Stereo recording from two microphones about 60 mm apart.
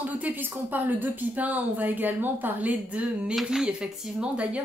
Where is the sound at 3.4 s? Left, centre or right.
Centre.